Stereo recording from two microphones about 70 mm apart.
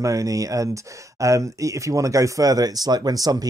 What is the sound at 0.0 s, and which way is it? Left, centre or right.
Speech, right.